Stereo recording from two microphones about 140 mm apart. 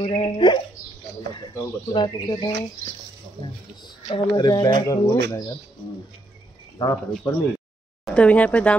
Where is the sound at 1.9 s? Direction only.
30° left (ahead or behind).